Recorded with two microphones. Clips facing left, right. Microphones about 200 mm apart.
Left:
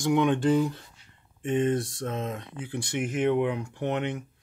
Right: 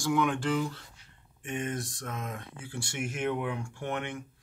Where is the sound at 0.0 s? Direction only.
25° left (ahead or behind).